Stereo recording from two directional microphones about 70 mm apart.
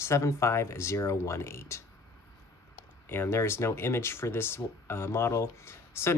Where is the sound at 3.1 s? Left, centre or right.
Left.